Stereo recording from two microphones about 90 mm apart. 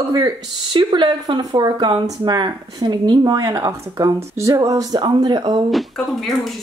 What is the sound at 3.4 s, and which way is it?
Speech, 35° right (ahead or behind).